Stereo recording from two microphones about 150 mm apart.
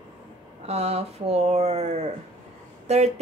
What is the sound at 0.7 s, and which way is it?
Speech, 45° right (ahead or behind).